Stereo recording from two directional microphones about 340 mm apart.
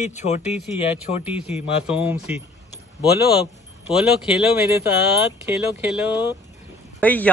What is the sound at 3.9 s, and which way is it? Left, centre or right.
A man's voice, centre.